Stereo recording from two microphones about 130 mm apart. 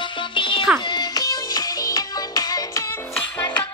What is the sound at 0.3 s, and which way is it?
Music, 40° left (ahead or behind).